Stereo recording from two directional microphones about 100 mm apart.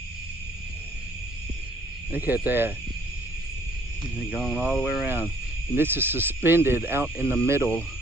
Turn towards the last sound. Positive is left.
turn(degrees=-25)  # may be behind; listen again after turning